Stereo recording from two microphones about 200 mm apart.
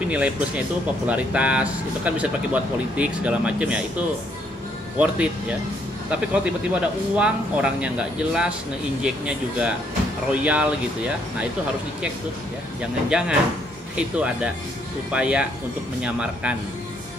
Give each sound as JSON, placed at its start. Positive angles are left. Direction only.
{"t": 0.1, "sound": "speech", "side_deg": -5}
{"t": 4.9, "sound": "speech", "side_deg": -5}
{"t": 13.1, "sound": "speech", "side_deg": -5}